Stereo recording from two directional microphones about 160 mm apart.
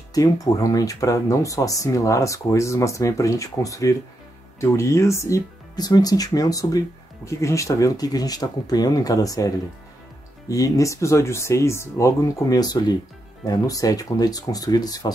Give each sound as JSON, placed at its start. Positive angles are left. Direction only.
{"t": 0.1, "sound": "speech", "side_deg": 20}
{"t": 10.5, "sound": "speech", "side_deg": 20}